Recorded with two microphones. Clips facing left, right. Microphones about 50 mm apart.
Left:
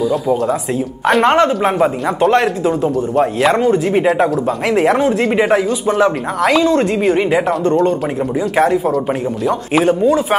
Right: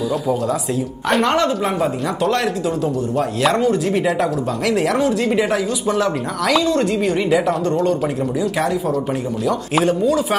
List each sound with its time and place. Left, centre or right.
1.2 s speech: left